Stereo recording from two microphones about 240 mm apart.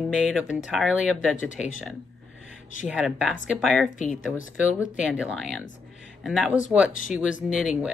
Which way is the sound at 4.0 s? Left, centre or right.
Left.